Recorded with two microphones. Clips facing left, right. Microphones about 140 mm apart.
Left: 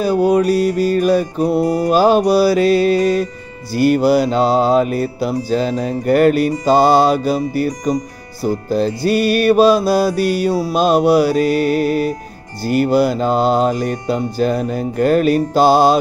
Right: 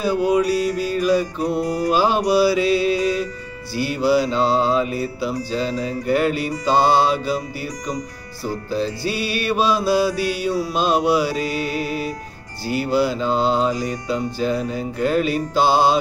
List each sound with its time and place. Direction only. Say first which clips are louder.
0.0 s music: left 4 dB; 45° left (ahead or behind)